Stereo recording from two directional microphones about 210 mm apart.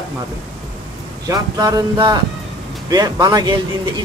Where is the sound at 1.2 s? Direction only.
20° right (ahead or behind).